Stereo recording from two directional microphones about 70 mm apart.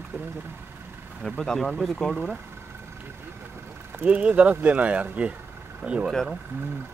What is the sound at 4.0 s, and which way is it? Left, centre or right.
Speech, right.